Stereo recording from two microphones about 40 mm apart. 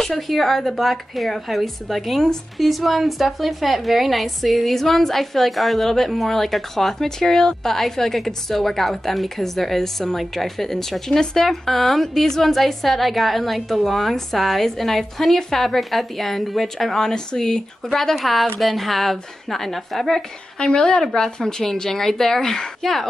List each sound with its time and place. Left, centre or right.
0.0 s a woman's voice: centre
18.1 s a woman's voice: centre
20.5 s a woman's voice: left